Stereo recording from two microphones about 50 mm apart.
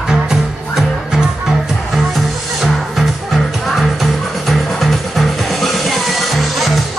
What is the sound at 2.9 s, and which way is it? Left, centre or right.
Music, centre.